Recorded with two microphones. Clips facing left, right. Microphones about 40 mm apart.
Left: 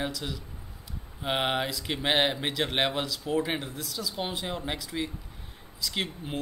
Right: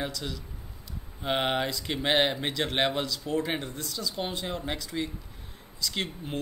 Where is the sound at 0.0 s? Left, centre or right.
Centre.